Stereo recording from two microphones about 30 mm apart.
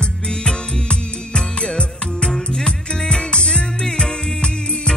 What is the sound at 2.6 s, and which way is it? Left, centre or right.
Music, left.